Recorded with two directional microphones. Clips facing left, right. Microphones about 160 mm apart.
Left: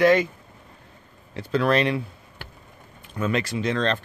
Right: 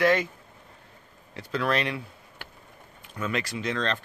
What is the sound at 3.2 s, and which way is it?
Speech, 30° left (ahead or behind).